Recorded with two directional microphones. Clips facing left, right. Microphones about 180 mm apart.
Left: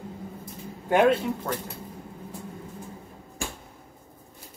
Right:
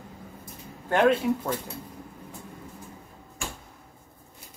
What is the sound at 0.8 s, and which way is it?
Speech, 5° left (ahead or behind).